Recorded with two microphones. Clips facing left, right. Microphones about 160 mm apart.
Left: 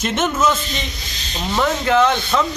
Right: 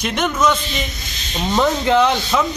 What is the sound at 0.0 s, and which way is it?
Speech, centre (ahead or behind).